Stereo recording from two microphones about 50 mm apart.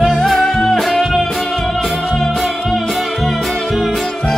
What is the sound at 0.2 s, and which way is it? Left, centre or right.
Music, centre.